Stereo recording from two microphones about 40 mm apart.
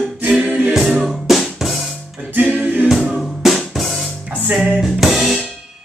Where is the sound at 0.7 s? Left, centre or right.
Centre.